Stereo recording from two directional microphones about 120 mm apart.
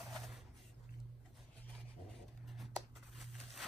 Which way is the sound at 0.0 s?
Centre (ahead or behind).